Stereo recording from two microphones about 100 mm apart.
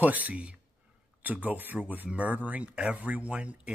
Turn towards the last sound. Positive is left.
turn(degrees=-10)  # may be behind; listen again after turning